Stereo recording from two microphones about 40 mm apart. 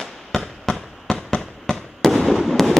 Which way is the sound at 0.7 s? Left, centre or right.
Centre.